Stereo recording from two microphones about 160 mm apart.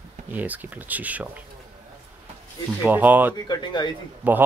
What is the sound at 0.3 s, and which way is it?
A man's voice, 10° right (ahead or behind).